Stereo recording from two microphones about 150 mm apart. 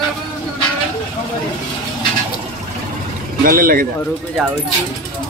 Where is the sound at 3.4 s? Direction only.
75° right (ahead or behind).